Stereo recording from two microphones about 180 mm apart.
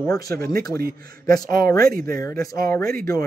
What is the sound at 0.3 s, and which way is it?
Speech, 55° right (ahead or behind).